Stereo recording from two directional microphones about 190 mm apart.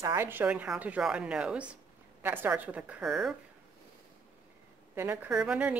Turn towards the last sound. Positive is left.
turn(degrees=-5)  # may be behind; listen again after turning